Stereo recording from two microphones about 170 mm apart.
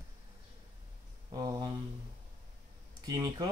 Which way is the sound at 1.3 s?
20° right (ahead or behind).